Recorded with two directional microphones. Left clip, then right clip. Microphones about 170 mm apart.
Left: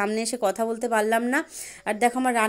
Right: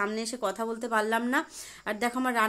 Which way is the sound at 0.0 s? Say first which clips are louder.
Left 6 dB; 25° left (ahead or behind).